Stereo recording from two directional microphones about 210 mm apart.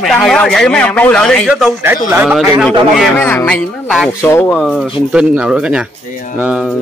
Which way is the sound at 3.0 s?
10° left (ahead or behind).